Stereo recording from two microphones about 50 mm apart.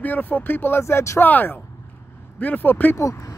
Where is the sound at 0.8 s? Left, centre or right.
Left.